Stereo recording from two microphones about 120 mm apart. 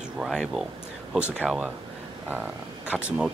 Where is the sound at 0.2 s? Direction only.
5° right (ahead or behind).